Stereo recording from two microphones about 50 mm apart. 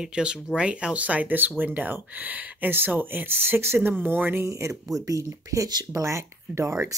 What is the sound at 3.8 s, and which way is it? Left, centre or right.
Speech, right.